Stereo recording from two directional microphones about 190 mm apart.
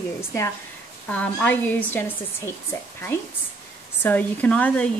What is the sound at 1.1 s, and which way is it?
Speech, 10° left (ahead or behind).